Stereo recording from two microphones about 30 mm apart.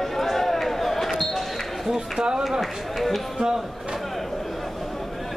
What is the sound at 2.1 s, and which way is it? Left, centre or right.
Run, right.